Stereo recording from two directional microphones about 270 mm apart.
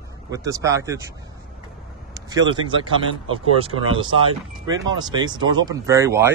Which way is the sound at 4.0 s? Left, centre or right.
Centre.